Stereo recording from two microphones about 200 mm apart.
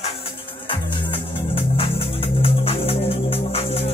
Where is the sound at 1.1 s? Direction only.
30° left (ahead or behind).